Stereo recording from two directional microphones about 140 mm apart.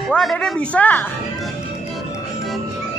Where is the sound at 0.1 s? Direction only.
5° left (ahead or behind).